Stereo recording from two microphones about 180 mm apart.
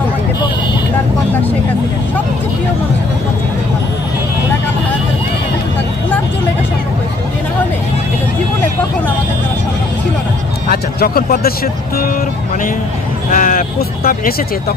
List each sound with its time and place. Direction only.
10.7 s vehicle: 55° left (ahead or behind)
13.3 s speech: 50° left (ahead or behind)